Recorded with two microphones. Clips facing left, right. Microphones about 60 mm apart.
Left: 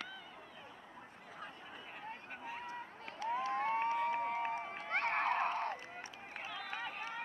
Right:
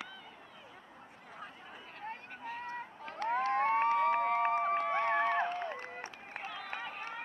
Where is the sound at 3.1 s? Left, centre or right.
Right.